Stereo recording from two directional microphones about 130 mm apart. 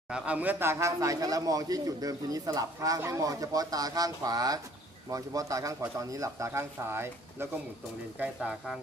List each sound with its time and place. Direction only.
0.1 s a man's voice: 10° right (ahead or behind)
8.2 s speech: 5° right (ahead or behind)